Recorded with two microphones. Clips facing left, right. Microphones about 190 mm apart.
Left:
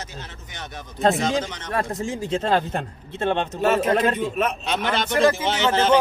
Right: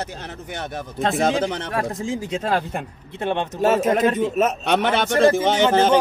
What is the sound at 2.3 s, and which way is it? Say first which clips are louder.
Speech: left 4 dB; 10° right (ahead or behind).